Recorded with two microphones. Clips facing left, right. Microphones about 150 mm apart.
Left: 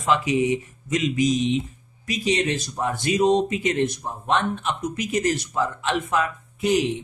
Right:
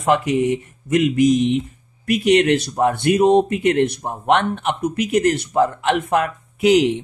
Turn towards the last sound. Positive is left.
turn(degrees=-70)  # may be behind; listen again after turning